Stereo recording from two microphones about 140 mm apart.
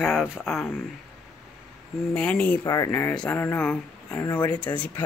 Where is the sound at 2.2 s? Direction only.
10° left (ahead or behind).